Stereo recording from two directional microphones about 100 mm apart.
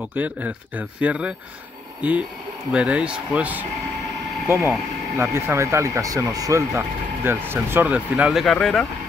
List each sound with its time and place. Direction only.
0.1 s speech: 15° right (ahead or behind)
4.5 s speech: 25° right (ahead or behind)
7.2 s speech: 25° right (ahead or behind)
8.3 s speech: 5° right (ahead or behind)